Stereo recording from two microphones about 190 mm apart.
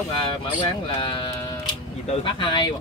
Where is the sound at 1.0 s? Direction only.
25° left (ahead or behind).